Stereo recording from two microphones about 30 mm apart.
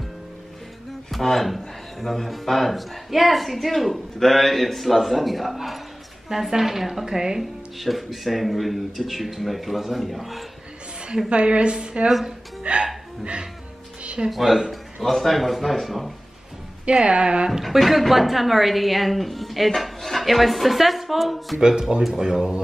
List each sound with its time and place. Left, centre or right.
1.1 s a woman's voice: centre
7.1 s speech: centre
7.8 s a woman's voice: centre
11.2 s a woman's voice: right
14.3 s a woman's voice: centre
17.0 s a woman's voice: right
17.6 s a woman's voice: centre
21.5 s speech: right